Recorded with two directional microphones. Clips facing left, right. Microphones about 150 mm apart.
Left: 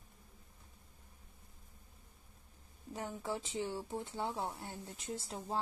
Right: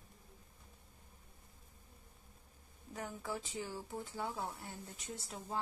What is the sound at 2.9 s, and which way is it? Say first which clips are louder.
Speech: left 3 dB; 25° left (ahead or behind).